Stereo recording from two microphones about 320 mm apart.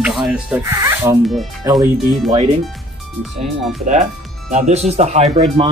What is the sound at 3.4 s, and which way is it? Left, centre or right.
Speech, centre.